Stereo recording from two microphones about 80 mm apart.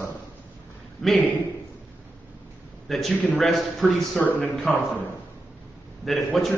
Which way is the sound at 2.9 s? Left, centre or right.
Centre.